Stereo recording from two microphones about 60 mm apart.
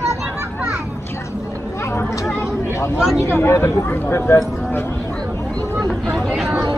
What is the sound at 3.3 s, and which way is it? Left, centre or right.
Speech, left.